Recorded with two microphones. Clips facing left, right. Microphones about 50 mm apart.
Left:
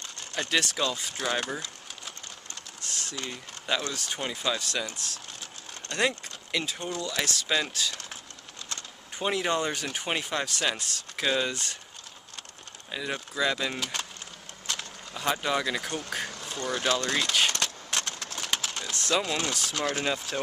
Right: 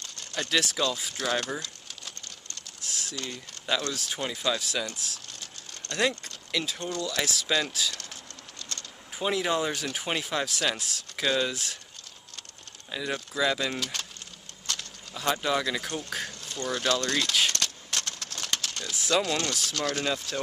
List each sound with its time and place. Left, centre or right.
0.0 s a sound: centre
1.1 s speech: centre
1.6 s a sound: centre
2.9 s speech: centre
3.2 s speech: centre
5.4 s speech: centre
7.9 s a sound: centre
9.2 s speech: centre
11.5 s speech: centre
12.9 s speech: centre
16.3 s a sound: centre
19.1 s speech: centre